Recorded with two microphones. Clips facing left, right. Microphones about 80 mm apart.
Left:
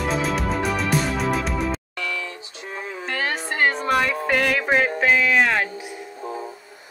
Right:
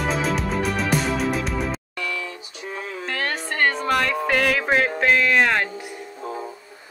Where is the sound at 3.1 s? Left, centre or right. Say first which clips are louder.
Left 1 dB; centre.